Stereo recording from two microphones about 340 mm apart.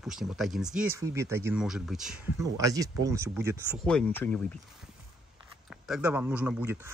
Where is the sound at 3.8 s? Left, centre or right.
Centre.